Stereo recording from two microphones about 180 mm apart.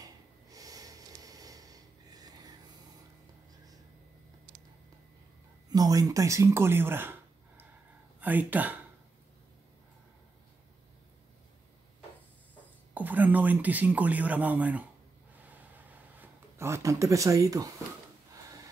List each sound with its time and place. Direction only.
0.0 s snort: 20° right (ahead or behind)
5.7 s speech: 20° right (ahead or behind)
12.9 s speech: 10° right (ahead or behind)
15.3 s a sound: 10° right (ahead or behind)